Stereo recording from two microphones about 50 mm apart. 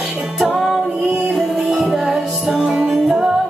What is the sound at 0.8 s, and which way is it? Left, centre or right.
Music, centre.